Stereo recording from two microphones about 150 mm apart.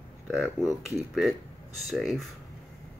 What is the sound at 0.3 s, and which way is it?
Speech, centre (ahead or behind).